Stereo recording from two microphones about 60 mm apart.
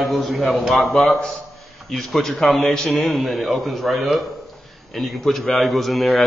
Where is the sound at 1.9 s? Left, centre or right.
Centre.